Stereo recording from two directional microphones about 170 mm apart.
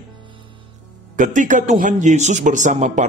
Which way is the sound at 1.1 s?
50° right (ahead or behind).